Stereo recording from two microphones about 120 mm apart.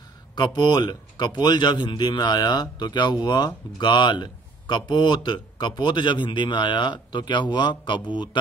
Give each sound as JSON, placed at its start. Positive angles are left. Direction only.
{"t": 0.4, "sound": "speech", "side_deg": 35}